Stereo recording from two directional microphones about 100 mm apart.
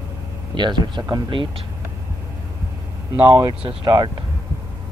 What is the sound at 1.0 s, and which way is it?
Speech, 35° right (ahead or behind).